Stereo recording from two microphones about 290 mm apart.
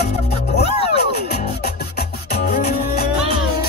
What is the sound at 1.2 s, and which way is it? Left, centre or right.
Music, left.